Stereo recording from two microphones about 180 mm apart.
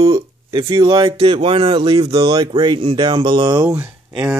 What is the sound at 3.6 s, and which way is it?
Speech, 5° right (ahead or behind).